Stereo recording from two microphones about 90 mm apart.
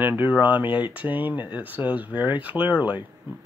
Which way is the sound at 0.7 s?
65° left (ahead or behind).